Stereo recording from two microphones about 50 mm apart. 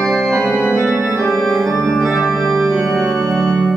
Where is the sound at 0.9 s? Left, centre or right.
Right.